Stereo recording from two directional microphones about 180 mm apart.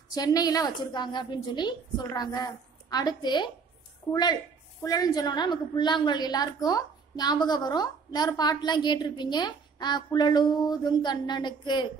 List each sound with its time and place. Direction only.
0.1 s a woman's voice: 20° left (ahead or behind)